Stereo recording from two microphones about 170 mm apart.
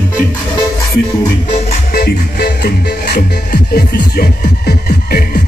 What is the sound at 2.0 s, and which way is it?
Music, 65° left (ahead or behind).